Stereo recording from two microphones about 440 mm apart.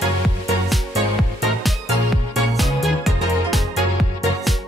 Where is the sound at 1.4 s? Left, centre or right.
Centre.